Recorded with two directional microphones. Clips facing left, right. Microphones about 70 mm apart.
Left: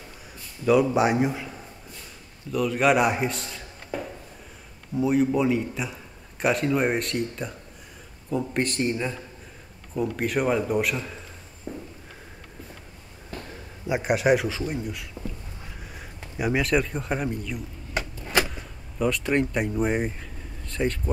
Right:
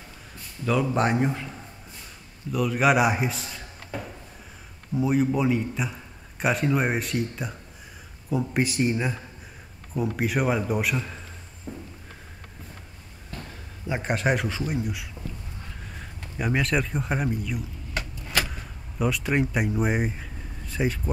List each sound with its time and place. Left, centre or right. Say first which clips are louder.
0.7 s speech: left 4 dB; centre
2.5 s a man's voice: even; centre
11.7 s a sound: left 2 dB; centre
13.8 s speech: left 4 dB; centre
17.9 s vehicle: left 3 dB; centre
18.5 s speech: even; centre